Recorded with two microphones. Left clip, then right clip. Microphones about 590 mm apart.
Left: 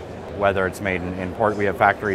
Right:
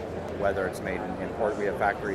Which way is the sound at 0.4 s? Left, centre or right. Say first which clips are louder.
Left 8 dB; left.